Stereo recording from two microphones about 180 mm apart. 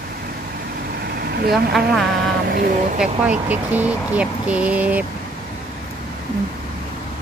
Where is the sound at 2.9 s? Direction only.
5° right (ahead or behind).